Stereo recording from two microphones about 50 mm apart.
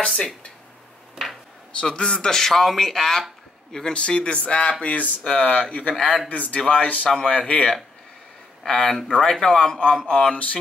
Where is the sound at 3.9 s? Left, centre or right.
Centre.